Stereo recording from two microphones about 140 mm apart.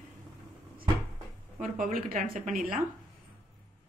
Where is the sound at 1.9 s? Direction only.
80° right.